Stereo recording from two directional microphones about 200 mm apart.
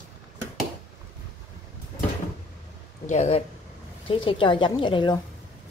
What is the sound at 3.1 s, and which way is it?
A woman's voice, 35° left (ahead or behind).